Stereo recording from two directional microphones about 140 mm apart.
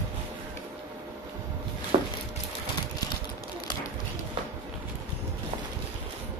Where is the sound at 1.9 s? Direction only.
45° right (ahead or behind).